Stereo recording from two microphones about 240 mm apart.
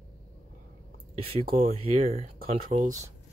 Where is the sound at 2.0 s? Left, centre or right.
Right.